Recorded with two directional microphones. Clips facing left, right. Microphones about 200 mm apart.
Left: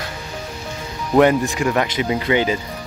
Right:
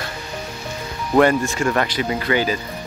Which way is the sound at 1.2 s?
15° left (ahead or behind).